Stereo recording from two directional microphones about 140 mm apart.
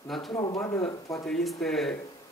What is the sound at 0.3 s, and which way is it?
Speech, 35° left (ahead or behind).